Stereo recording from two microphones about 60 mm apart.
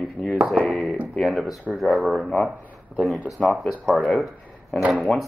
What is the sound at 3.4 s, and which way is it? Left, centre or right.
Speech, centre.